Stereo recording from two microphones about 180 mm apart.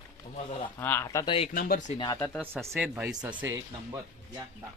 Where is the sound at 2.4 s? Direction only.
10° right (ahead or behind).